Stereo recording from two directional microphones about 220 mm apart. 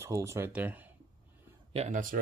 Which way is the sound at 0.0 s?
15° right (ahead or behind).